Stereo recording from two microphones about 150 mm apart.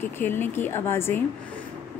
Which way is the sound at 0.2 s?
15° left (ahead or behind).